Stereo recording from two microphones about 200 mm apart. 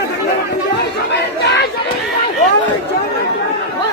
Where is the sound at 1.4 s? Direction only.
60° left (ahead or behind).